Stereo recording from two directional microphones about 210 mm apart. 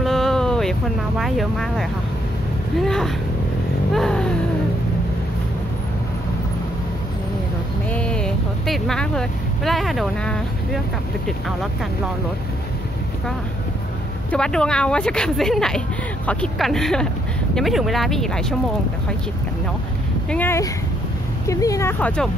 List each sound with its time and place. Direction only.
0.0 s vehicle: centre (ahead or behind)
2.8 s speech: centre (ahead or behind)
7.9 s speech: 5° left (ahead or behind)
14.3 s speech: 5° left (ahead or behind)
20.2 s speech: 10° left (ahead or behind)